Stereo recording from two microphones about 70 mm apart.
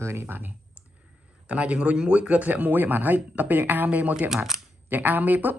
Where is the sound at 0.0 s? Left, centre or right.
Right.